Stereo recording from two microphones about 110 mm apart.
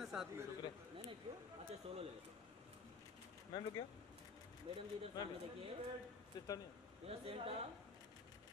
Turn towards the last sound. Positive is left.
turn(degrees=-60)  # may be behind; listen again after turning